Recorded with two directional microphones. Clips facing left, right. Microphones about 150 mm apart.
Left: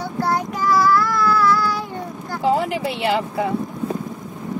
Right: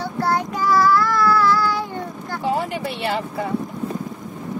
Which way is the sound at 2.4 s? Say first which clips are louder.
Left 4 dB; 90° left.